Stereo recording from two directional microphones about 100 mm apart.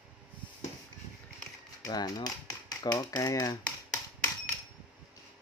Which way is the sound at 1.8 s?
40° left (ahead or behind).